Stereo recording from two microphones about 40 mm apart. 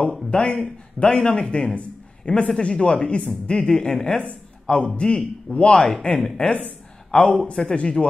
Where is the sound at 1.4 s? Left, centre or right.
Left.